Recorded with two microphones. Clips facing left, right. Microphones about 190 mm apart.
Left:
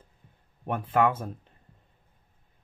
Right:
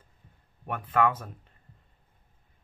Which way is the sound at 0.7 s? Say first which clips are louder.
Left 2 dB; 25° left (ahead or behind).